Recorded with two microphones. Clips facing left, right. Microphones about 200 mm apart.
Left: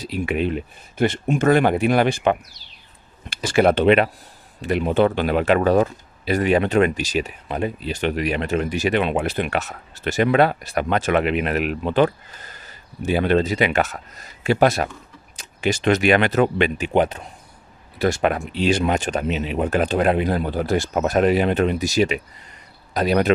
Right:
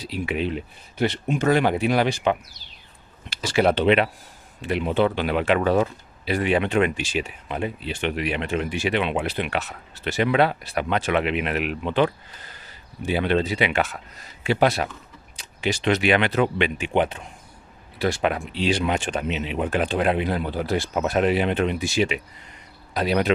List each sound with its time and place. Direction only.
0.0 s speech: 50° left (ahead or behind)